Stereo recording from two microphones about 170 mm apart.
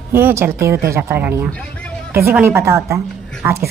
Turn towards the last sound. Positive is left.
turn(degrees=-15)  # may be behind; listen again after turning